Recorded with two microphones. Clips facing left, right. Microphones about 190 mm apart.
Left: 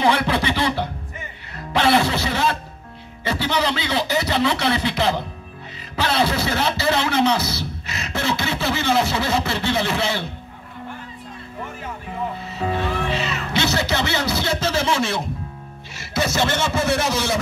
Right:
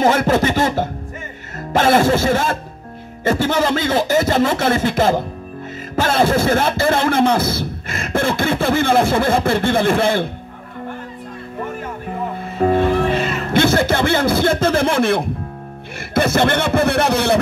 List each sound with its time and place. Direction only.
0.0 s a sound: 45° right (ahead or behind)
1.6 s a man's voice: 45° right (ahead or behind)
11.6 s music: 50° right (ahead or behind)
16.0 s speech: 55° right (ahead or behind)